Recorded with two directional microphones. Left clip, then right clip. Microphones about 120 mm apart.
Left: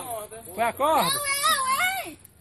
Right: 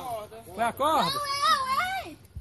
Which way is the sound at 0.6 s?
20° left (ahead or behind).